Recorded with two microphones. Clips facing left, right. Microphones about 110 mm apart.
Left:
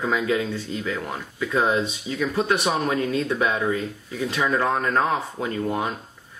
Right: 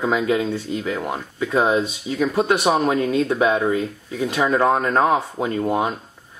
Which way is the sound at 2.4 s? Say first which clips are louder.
Right 5 dB; 30° right (ahead or behind).